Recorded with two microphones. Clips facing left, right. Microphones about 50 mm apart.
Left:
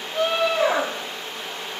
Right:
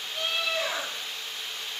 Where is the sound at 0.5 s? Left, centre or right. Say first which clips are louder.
Left 10 dB; left.